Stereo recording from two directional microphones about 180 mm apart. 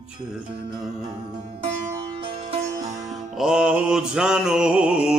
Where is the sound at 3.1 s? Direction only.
Centre (ahead or behind).